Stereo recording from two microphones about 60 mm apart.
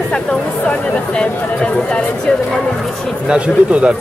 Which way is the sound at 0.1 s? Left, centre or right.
Centre.